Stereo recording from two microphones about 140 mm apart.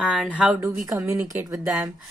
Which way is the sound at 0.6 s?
20° right (ahead or behind).